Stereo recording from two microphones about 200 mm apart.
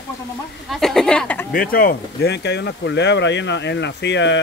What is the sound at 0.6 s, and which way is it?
Speech, centre (ahead or behind).